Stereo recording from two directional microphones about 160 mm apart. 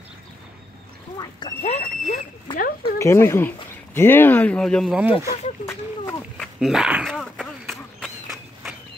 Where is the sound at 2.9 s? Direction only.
15° left (ahead or behind); by 5.3 s 10° right (ahead or behind).